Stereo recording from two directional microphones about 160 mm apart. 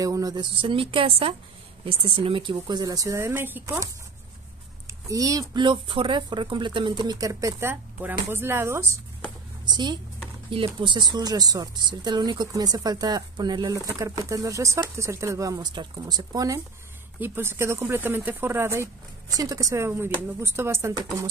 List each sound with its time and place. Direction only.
0.0 s speech: 20° right (ahead or behind)
5.0 s speech: 20° right (ahead or behind)
9.7 s speech: 25° right (ahead or behind)